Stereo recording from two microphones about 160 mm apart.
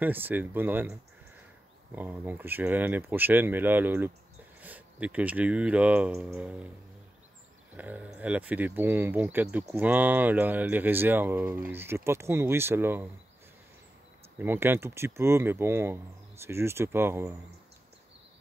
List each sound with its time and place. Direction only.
0.0 s speech: 10° right (ahead or behind)
2.0 s speech: 10° right (ahead or behind)
7.7 s speech: 10° right (ahead or behind)
14.4 s speech: 15° right (ahead or behind)